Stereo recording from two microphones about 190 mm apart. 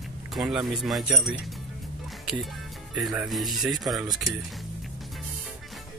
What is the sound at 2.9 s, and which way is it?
Speech, 5° right (ahead or behind).